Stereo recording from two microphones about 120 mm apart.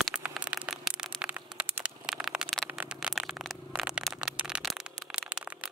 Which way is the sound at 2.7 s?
10° right (ahead or behind).